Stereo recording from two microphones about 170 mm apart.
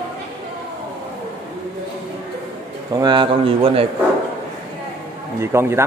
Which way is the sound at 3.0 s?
25° right (ahead or behind).